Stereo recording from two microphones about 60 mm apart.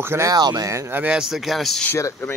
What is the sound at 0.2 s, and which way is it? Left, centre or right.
Speech, right.